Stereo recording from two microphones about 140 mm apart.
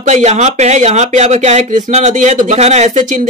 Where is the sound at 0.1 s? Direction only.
55° right (ahead or behind).